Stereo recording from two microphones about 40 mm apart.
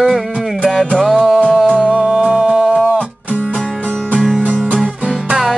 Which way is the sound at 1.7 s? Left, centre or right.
Centre.